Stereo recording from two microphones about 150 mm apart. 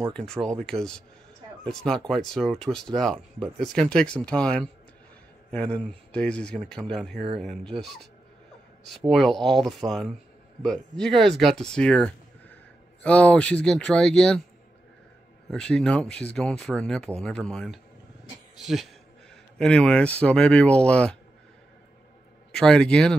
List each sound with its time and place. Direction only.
0.0 s speech: 5° left (ahead or behind)
9.1 s speech: centre (ahead or behind)
15.5 s speech: 5° left (ahead or behind)
22.5 s speech: 5° left (ahead or behind)